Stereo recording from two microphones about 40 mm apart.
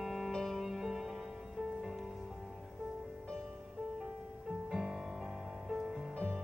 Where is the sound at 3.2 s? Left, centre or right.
Centre.